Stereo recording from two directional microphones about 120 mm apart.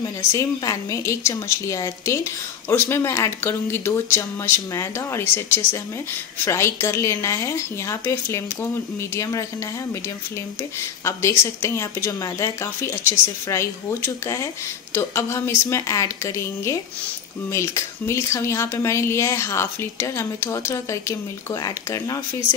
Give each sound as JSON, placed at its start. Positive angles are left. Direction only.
{"t": 0.0, "sound": "speech", "side_deg": 25}
{"t": 10.8, "sound": "speech", "side_deg": 20}